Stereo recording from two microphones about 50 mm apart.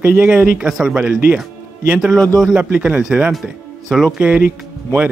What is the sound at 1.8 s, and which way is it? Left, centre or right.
Speech, right.